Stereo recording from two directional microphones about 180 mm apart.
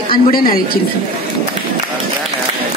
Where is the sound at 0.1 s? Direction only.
55° left (ahead or behind).